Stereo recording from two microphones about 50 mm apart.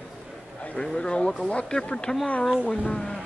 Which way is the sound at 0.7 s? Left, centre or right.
Centre.